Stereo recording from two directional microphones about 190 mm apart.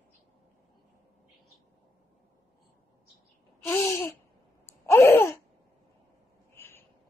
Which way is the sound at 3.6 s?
10° left (ahead or behind).